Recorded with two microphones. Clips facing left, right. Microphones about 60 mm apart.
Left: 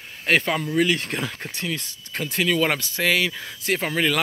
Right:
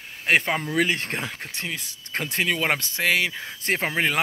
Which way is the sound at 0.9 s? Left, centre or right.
Right.